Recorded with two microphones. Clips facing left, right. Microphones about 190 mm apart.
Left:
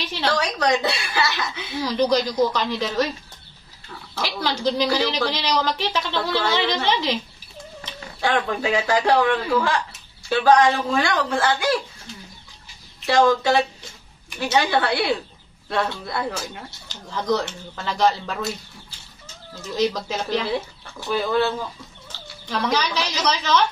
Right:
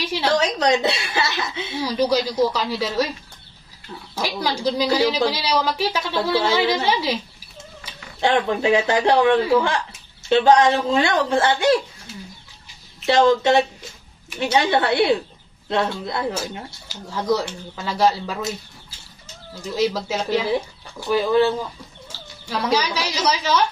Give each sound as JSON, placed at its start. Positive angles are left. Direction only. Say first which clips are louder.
{"t": 0.0, "sound": "a woman's voice", "louder": "right 3 dB", "side_deg": -10}
{"t": 0.3, "sound": "a man's voice", "louder": "right 2 dB", "side_deg": -20}
{"t": 1.8, "sound": "a woman's voice", "louder": "even", "side_deg": -10}
{"t": 4.1, "sound": "a woman's voice", "louder": "right 2 dB", "side_deg": -10}
{"t": 8.2, "sound": "a man's voice", "louder": "right 3 dB", "side_deg": -25}
{"t": 13.0, "sound": "a man's voice", "louder": "right 2 dB", "side_deg": -20}
{"t": 16.9, "sound": "a woman's voice", "louder": "right 1 dB", "side_deg": -5}
{"t": 19.8, "sound": "a woman's voice", "louder": "right 1 dB", "side_deg": -5}